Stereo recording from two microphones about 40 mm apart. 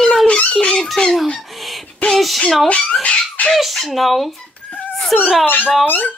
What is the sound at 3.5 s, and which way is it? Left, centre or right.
Speech, centre.